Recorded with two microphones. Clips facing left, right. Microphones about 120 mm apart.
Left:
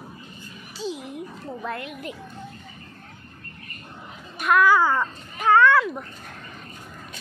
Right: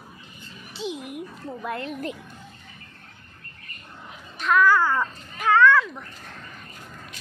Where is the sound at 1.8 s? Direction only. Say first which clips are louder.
Right 4 dB; 35° right (ahead or behind).